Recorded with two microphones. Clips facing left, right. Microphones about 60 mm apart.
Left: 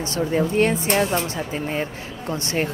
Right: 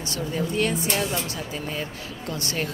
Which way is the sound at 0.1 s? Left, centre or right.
Left.